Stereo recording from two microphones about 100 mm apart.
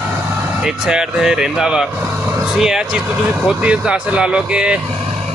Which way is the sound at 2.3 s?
5° right (ahead or behind).